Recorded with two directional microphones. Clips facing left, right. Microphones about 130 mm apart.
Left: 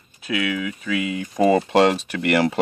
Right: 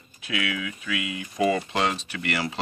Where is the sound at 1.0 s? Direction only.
45° left (ahead or behind).